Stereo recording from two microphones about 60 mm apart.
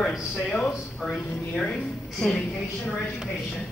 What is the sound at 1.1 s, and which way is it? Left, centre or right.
Speech, left.